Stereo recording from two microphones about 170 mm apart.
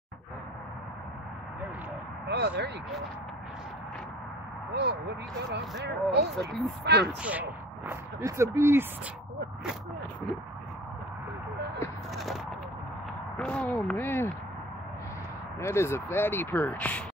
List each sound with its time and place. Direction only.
2.2 s speech: 85° right
5.5 s speech: 85° right
7.2 s speech: 10° right (ahead or behind)
13.4 s speech: 5° left (ahead or behind)
15.6 s speech: 15° left (ahead or behind)